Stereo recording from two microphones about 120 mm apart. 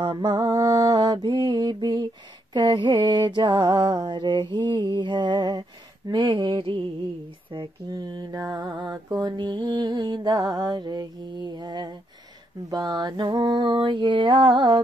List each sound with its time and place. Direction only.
0.0 s mantra: 40° right (ahead or behind)